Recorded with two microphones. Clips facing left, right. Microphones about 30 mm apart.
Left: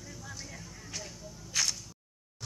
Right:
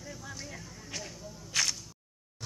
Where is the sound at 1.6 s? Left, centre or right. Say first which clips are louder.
Right 1 dB; right.